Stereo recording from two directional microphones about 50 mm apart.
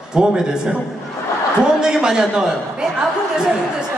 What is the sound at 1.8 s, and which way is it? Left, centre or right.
A woman's voice, centre.